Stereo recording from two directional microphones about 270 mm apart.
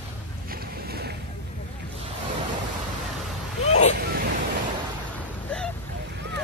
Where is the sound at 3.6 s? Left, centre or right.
Left.